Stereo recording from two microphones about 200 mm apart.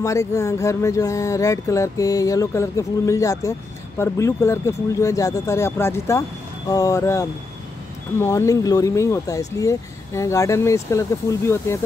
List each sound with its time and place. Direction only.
0.0 s speech: 15° left (ahead or behind)